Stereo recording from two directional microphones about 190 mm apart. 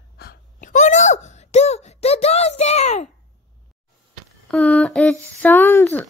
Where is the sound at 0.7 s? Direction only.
40° left (ahead or behind).